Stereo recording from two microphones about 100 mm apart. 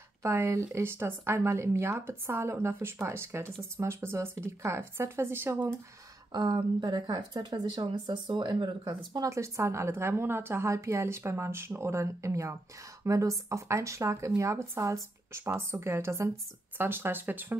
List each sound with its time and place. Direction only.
0.2 s speech: 25° right (ahead or behind)
6.3 s speech: 45° right (ahead or behind); by 17.6 s 20° right (ahead or behind)